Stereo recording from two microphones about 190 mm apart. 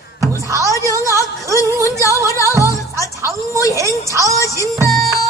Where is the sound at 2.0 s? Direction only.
15° right (ahead or behind).